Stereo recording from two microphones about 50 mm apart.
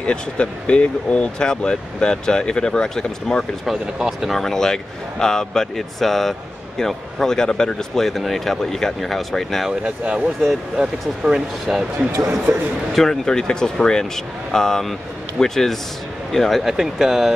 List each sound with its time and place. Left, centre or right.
0.0 s speech: left
3.8 s speech: centre
4.3 s speech: centre
9.7 s speech: right; by 16.6 s centre
16.6 s speech: centre